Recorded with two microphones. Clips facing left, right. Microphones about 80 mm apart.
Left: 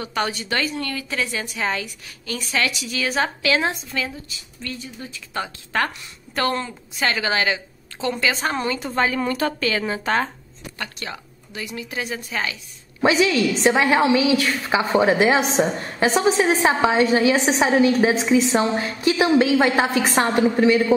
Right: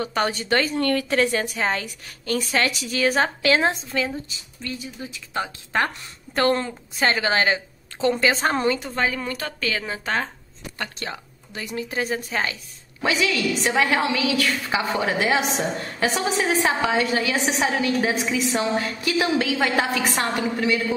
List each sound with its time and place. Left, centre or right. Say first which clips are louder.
0.0 s a woman's voice: right 1 dB; right
4.7 s a woman's voice: right 1 dB; centre
6.3 s a woman's voice: right 2 dB; right
8.5 s a woman's voice: right 2 dB; centre
8.9 s a woman's voice: left 4 dB; centre
10.8 s a woman's voice: right 1 dB; right
13.0 s a woman's voice: left 5 dB; left